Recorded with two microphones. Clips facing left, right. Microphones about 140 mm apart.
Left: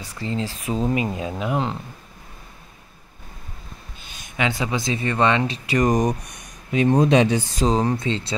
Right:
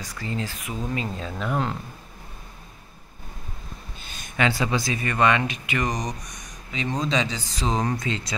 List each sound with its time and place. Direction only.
0.0 s speech: 30° left (ahead or behind)
0.9 s speech: 15° left (ahead or behind)
4.1 s speech: 15° left (ahead or behind); by 5.9 s 35° left (ahead or behind)
5.9 s speech: 55° left (ahead or behind)
7.6 s speech: 35° left (ahead or behind)